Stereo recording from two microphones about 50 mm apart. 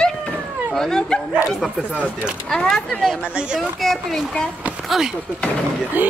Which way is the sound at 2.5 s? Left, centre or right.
Centre.